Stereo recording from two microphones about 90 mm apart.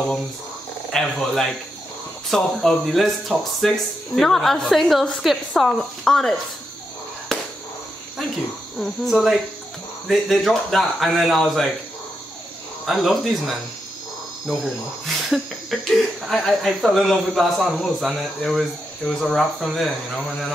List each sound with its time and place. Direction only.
0.9 s speech: 5° left (ahead or behind)
7.3 s a sound: 5° left (ahead or behind)
8.7 s speech: centre (ahead or behind)
12.8 s speech: centre (ahead or behind)
15.1 s speech: centre (ahead or behind)